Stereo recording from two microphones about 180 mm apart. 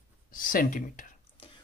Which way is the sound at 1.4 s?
30° left (ahead or behind).